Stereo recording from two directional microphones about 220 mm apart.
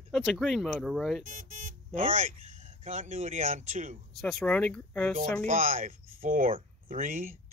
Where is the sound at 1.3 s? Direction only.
35° right (ahead or behind).